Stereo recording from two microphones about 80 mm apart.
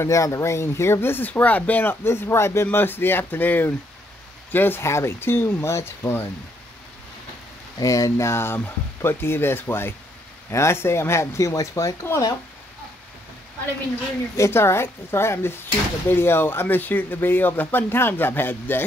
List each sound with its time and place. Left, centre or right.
0.0 s speech: left
7.8 s speech: left
14.3 s speech: left